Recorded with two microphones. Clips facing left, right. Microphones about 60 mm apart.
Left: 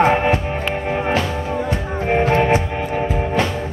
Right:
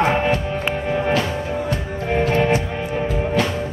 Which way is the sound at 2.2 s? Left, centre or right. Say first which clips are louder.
Left 2 dB; left.